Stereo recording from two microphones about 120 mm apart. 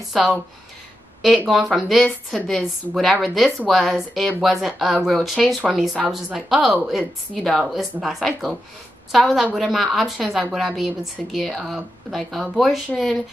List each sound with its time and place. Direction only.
0.1 s speech: centre (ahead or behind)
1.5 s speech: centre (ahead or behind)